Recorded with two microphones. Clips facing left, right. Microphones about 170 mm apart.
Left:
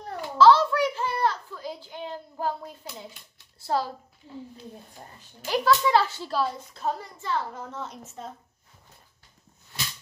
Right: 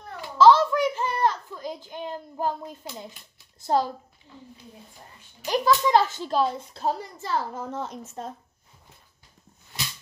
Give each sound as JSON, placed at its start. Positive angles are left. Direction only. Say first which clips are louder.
{"t": 0.4, "sound": "a sound", "louder": "right 1 dB", "side_deg": -15}
{"t": 3.6, "sound": "a child's voice", "louder": "right 4 dB", "side_deg": -20}
{"t": 5.4, "sound": "a child's voice", "louder": "right 1 dB", "side_deg": -15}